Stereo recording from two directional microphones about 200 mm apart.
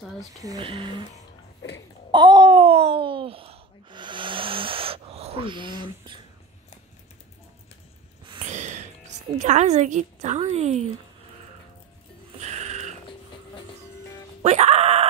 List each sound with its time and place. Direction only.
0.4 s speech: 20° right (ahead or behind)
2.1 s a sound: 20° right (ahead or behind)
8.3 s snort: 35° right (ahead or behind)
9.4 s a woman's voice: 35° right (ahead or behind)
12.4 s music: 35° right (ahead or behind)
14.4 s music: 35° right (ahead or behind)